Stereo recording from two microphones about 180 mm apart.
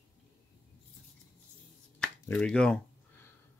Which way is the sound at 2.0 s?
5° left (ahead or behind).